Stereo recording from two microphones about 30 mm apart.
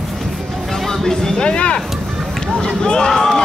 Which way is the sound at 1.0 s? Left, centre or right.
Centre.